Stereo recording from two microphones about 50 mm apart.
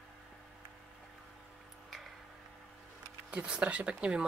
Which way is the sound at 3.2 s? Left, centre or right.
Right.